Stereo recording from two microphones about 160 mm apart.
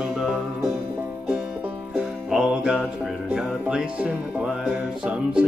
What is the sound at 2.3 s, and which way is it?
Music, 5° right (ahead or behind).